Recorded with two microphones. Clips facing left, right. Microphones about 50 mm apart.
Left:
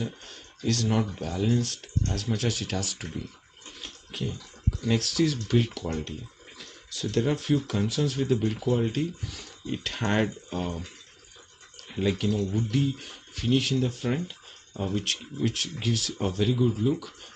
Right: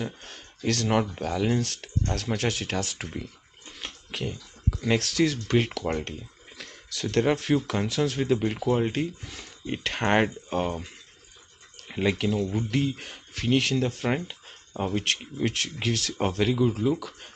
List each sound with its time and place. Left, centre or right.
0.0 s speech: right
3.8 s a sound: right
4.7 s speech: right
8.5 s speech: right
12.0 s speech: right
12.3 s speech: right
12.7 s speech: right